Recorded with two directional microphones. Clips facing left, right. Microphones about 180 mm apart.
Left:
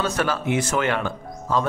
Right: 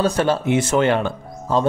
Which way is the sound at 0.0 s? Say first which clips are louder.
Right 5 dB; 30° right (ahead or behind).